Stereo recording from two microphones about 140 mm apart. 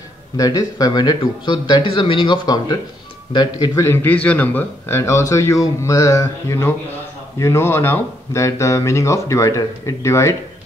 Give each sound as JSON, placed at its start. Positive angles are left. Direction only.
{"t": 0.4, "sound": "a man's voice", "side_deg": 25}